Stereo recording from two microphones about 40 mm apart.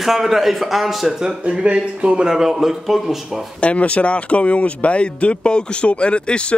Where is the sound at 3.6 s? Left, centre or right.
Left.